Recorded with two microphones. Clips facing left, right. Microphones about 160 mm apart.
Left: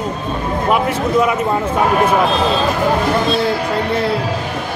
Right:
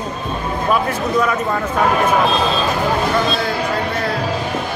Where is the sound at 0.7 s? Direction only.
20° left (ahead or behind).